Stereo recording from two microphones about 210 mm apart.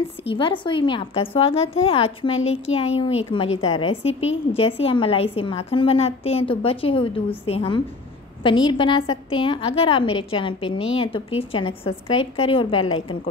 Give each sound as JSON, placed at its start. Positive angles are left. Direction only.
{"t": 0.2, "sound": "a woman's voice", "side_deg": 25}